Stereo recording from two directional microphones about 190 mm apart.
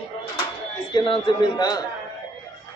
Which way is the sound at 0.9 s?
25° left (ahead or behind).